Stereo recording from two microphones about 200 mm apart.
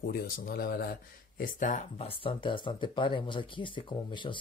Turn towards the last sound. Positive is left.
turn(degrees=25)  # may be behind; listen again after turning